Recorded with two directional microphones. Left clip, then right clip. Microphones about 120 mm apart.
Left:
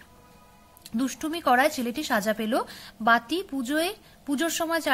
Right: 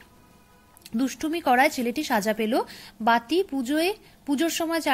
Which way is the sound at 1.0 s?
10° right (ahead or behind).